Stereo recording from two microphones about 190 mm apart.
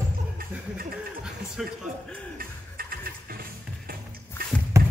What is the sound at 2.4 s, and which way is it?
Music, 50° right (ahead or behind).